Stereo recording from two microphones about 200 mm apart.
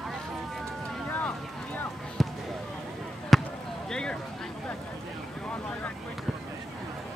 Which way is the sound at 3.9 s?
5° left (ahead or behind).